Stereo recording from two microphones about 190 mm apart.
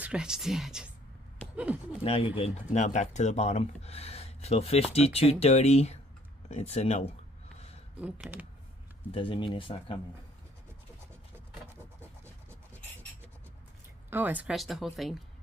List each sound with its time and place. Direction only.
0.0 s speech: 5° right (ahead or behind)
2.0 s speech: 30° left (ahead or behind)
6.5 s a sound: 35° left (ahead or behind)
8.0 s speech: 5° right (ahead or behind)
9.1 s speech: 30° left (ahead or behind)
14.1 s speech: 10° right (ahead or behind)